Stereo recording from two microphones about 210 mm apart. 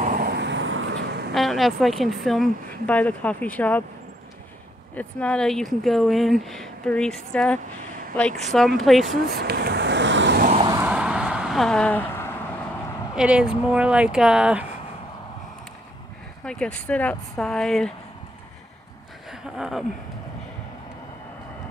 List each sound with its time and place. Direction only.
0.0 s vehicle: 40° right (ahead or behind); by 1.2 s 55° right (ahead or behind)
1.3 s speech: centre (ahead or behind)
4.9 s speech: 5° left (ahead or behind)
9.3 s a sound: 50° right (ahead or behind)
10.4 s a sound: 30° right (ahead or behind)
10.7 s vehicle: 10° right (ahead or behind); by 12.3 s 10° left (ahead or behind)
13.1 s speech: 5° right (ahead or behind)
16.4 s speech: 5° left (ahead or behind)
19.4 s speech: centre (ahead or behind)